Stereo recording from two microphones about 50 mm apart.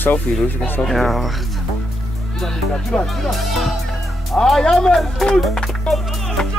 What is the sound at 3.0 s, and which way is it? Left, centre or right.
Speech, centre.